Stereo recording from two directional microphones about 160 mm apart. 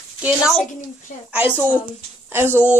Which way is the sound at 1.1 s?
55° left (ahead or behind).